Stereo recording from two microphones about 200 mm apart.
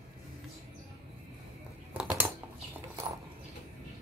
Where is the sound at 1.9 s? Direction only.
10° right (ahead or behind).